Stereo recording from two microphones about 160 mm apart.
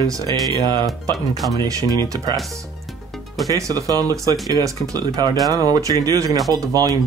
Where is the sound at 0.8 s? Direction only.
Centre (ahead or behind).